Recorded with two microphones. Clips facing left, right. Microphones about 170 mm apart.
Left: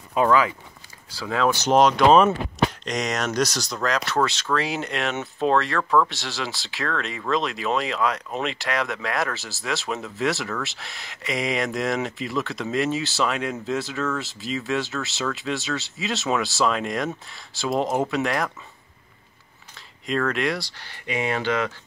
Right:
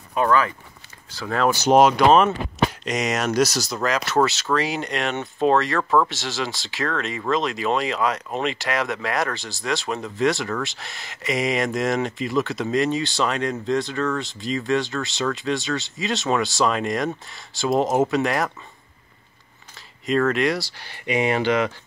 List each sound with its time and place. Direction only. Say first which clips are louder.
0.1 s speech: left 1 dB; 15° left (ahead or behind)
1.4 s speech: right 2 dB; 5° right (ahead or behind)
20.1 s speech: right 4 dB; centre (ahead or behind); by 21.7 s 20° right (ahead or behind)